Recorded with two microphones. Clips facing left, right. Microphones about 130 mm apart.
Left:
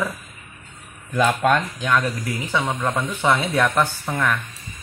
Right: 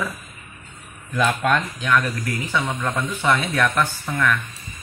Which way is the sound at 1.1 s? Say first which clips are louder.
Left 2 dB; 40° left (ahead or behind).